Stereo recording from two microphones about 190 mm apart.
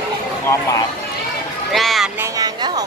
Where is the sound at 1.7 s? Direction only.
Centre (ahead or behind).